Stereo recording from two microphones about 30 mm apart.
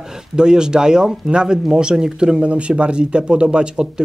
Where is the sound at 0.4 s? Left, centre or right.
Right.